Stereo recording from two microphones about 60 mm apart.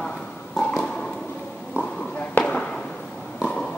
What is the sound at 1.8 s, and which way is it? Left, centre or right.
Walk, left.